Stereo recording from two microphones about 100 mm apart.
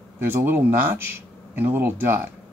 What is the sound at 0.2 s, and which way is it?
Speech, 25° right (ahead or behind).